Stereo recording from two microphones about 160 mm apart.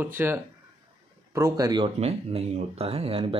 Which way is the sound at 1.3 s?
20° right (ahead or behind).